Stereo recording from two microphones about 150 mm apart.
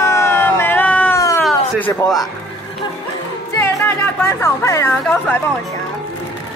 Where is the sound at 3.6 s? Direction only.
15° left (ahead or behind).